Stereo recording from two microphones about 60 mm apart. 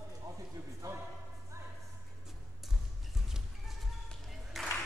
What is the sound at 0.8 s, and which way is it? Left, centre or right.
Music, right.